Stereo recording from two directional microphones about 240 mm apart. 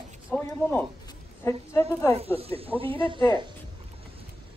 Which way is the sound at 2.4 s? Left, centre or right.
Right.